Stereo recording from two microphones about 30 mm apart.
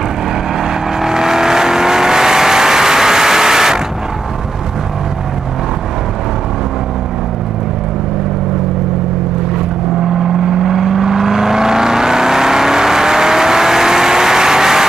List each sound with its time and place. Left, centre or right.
1.0 s vehicle: centre
10.2 s vehicle: right
10.6 s vehicle: centre